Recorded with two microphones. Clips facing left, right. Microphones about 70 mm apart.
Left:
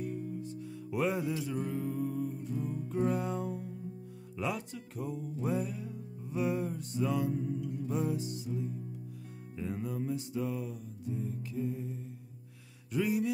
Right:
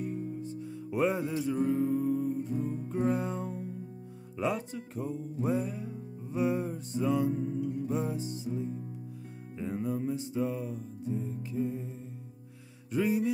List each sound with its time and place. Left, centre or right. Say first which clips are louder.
0.0 s music: right 2 dB; right
2.6 s music: left 1 dB; right
12.9 s music: right 3 dB; right